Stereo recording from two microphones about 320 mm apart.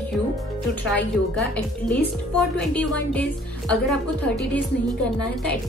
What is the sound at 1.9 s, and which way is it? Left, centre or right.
A woman's voice, centre.